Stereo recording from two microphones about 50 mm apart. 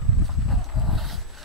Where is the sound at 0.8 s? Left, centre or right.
Centre.